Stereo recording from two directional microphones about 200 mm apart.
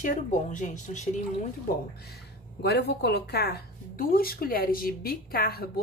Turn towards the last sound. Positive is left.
turn(degrees=50)  # may be behind; listen again after turning